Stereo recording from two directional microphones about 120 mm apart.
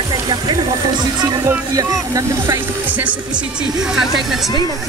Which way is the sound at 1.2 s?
30° right (ahead or behind).